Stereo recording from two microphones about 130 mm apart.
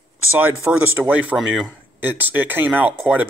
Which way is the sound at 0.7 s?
10° right (ahead or behind).